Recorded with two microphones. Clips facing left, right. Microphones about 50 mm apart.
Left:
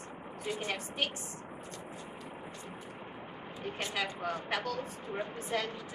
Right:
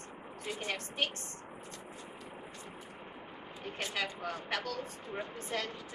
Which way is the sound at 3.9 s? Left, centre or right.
Centre.